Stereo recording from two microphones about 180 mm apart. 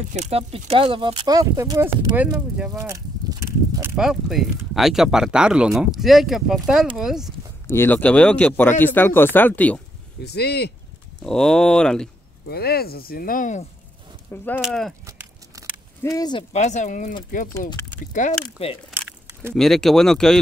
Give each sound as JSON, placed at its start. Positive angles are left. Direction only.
{"t": 0.1, "sound": "speech", "side_deg": -35}
{"t": 7.6, "sound": "speech", "side_deg": 15}
{"t": 10.2, "sound": "speech", "side_deg": 65}
{"t": 11.2, "sound": "speech", "side_deg": 5}
{"t": 12.4, "sound": "speech", "side_deg": 60}
{"t": 14.3, "sound": "speech", "side_deg": 10}
{"t": 15.0, "sound": "a sound", "side_deg": -15}
{"t": 16.0, "sound": "speech", "side_deg": 20}
{"t": 16.5, "sound": "speech", "side_deg": 40}
{"t": 17.6, "sound": "speech", "side_deg": 15}
{"t": 18.1, "sound": "speech", "side_deg": 40}
{"t": 18.9, "sound": "crumpling", "side_deg": -10}
{"t": 19.5, "sound": "speech", "side_deg": 0}